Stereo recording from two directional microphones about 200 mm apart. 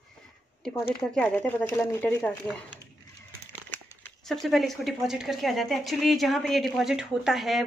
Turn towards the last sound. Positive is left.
turn(degrees=0)  # may be behind; listen again after turning